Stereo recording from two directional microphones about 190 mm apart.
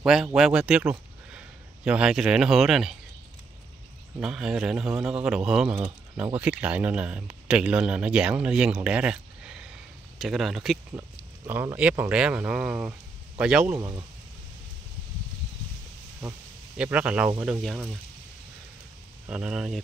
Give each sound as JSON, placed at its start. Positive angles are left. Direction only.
{"t": 0.0, "sound": "a man's voice", "side_deg": -5}
{"t": 4.2, "sound": "a man's voice", "side_deg": -5}
{"t": 13.7, "sound": "a man's voice", "side_deg": -20}
{"t": 16.2, "sound": "a man's voice", "side_deg": -5}
{"t": 19.2, "sound": "a man's voice", "side_deg": -5}